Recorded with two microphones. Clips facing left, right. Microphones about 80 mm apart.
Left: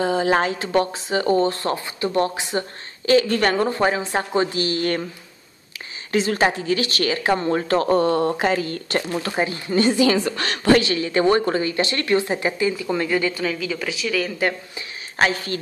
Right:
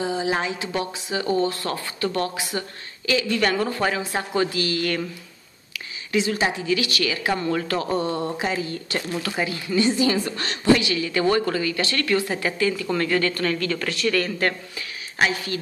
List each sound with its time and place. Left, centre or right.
0.0 s a woman's voice: left
3.1 s a woman's voice: left
3.6 s a woman's voice: left
7.8 s speech: left
9.1 s a woman's voice: left
9.9 s a woman's voice: left
10.8 s a woman's voice: left; by 14.5 s centre
15.1 s a woman's voice: left